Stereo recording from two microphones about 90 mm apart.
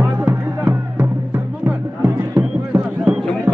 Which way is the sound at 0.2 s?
20° right (ahead or behind).